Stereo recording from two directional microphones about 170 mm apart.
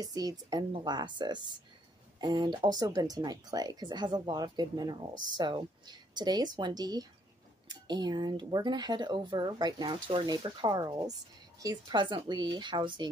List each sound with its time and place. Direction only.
0.0 s speech: 20° right (ahead or behind)